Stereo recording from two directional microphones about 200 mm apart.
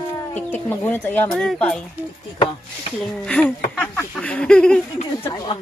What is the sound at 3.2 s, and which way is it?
Speech, 5° left (ahead or behind).